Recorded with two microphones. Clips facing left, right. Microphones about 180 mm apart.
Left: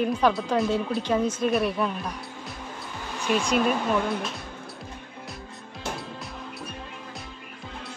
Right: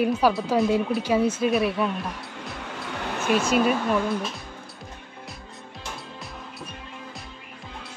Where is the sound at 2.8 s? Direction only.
70° right (ahead or behind).